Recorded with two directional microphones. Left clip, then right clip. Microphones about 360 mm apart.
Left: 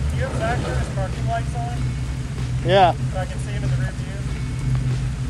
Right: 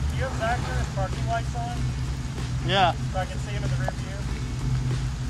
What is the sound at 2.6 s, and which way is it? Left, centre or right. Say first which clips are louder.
Speech: left 7 dB; centre.